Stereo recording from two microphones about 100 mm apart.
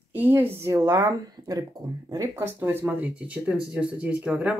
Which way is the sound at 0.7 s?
35° right (ahead or behind).